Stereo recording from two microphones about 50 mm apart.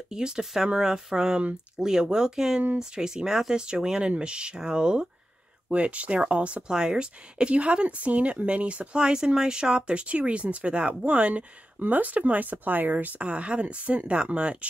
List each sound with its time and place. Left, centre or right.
0.1 s speech: centre